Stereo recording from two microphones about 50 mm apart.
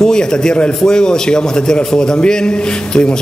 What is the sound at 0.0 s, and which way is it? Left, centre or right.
A man's voice, centre.